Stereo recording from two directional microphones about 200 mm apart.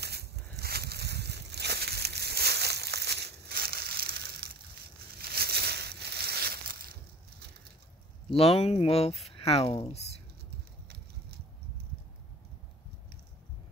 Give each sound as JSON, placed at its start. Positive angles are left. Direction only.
{"t": 0.0, "sound": "a sound", "side_deg": -55}
{"t": 5.2, "sound": "crushing", "side_deg": -50}
{"t": 8.4, "sound": "speech", "side_deg": 30}